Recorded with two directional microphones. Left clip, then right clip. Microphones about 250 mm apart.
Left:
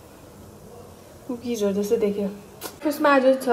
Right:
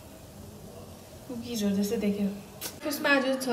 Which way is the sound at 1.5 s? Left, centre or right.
Left.